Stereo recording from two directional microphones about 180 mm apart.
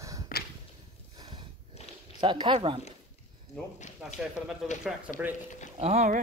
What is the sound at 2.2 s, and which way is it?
Speech, 25° right (ahead or behind).